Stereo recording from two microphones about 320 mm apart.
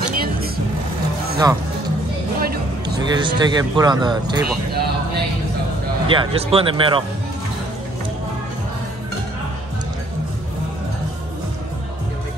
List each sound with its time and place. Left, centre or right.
0.1 s vehicle: right
1.4 s speech: centre
2.4 s music: right
3.0 s speech: centre
6.0 s speech: centre